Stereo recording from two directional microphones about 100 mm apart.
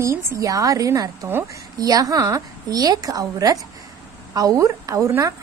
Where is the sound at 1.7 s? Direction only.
40° right (ahead or behind).